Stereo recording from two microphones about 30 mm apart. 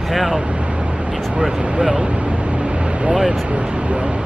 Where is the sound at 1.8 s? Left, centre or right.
Right.